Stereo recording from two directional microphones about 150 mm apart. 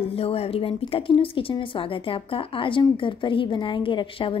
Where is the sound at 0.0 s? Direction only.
40° left (ahead or behind).